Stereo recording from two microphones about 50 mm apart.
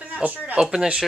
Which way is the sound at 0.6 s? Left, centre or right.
Centre.